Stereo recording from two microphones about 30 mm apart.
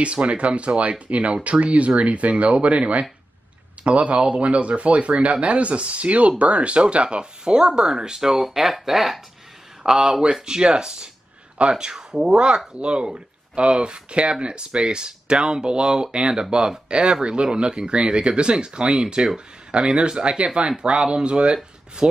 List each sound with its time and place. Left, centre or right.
0.0 s speech: right
0.7 s speech: right
3.8 s speech: right
8.5 s speech: centre
9.8 s speech: right